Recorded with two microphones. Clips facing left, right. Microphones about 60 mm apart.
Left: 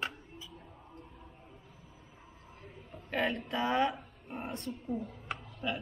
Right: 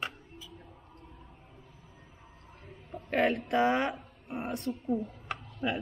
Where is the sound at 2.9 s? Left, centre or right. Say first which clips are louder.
Right 5 dB; right.